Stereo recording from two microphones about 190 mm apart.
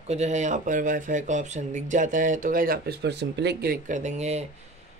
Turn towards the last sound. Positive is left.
turn(degrees=-35)  # may be behind; listen again after turning